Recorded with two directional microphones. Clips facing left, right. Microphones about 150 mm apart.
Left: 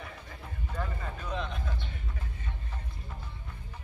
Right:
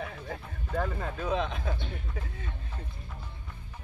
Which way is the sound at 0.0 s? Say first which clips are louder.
Right 7 dB; 70° right (ahead or behind).